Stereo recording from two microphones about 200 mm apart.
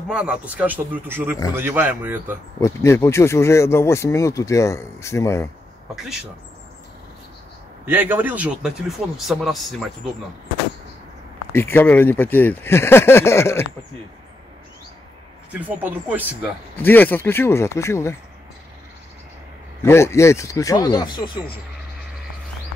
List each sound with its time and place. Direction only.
0.1 s speech: 5° right (ahead or behind)
2.6 s speech: 15° left (ahead or behind)
7.8 s speech: 10° right (ahead or behind)
11.5 s speech: 10° left (ahead or behind)
15.5 s speech: 10° right (ahead or behind)
16.7 s speech: 10° left (ahead or behind)
19.8 s speech: 15° left (ahead or behind)